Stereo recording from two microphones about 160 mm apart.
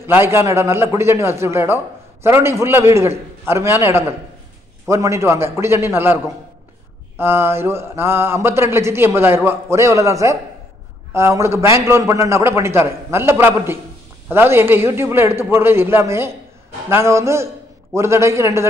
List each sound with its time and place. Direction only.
0.0 s speech: 15° right (ahead or behind)